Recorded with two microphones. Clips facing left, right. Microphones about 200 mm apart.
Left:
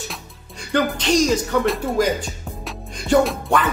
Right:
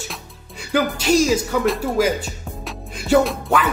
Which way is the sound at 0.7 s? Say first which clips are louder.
Right 1 dB; 5° right (ahead or behind).